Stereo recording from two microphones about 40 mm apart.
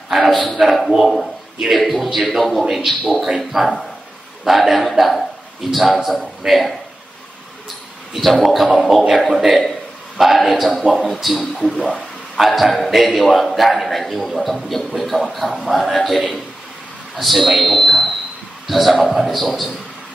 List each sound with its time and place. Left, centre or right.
0.1 s a man's voice: centre
8.1 s a man's voice: centre
11.6 s speech: centre
12.4 s a man's voice: centre